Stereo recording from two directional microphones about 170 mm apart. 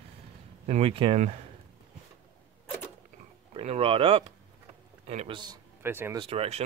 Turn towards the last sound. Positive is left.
turn(degrees=-35)  # may be behind; listen again after turning